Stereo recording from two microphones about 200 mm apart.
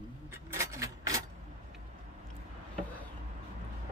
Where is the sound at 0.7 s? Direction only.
15° right (ahead or behind).